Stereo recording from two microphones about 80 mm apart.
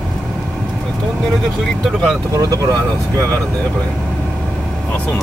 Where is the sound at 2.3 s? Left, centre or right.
Right.